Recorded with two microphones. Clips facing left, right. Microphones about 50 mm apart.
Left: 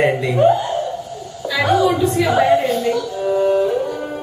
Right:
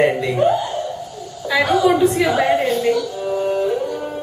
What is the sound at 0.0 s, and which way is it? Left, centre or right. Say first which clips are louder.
Laughter: left 1 dB; centre.